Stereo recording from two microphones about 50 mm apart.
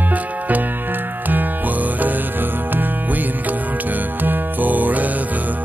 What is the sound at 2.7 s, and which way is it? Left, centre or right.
Music, right.